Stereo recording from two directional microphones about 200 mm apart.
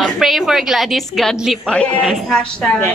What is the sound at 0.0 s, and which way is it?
A woman's voice, centre (ahead or behind).